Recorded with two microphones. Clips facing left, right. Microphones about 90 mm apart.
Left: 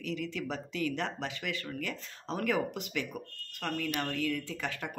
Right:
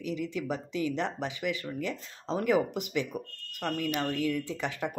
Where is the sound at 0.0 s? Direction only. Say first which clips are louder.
Right 3 dB; 15° right (ahead or behind).